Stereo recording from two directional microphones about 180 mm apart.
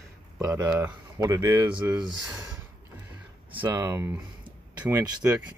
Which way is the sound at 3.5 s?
15° right (ahead or behind).